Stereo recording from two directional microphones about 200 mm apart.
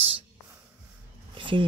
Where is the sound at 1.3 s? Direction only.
25° right (ahead or behind).